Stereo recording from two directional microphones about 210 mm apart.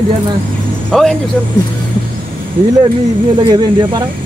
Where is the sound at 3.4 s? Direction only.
15° right (ahead or behind).